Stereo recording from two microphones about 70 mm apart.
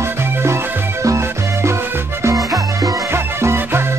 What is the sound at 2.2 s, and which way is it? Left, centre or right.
Music, right.